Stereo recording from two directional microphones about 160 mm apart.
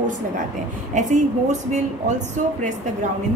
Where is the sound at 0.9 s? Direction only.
50° right (ahead or behind).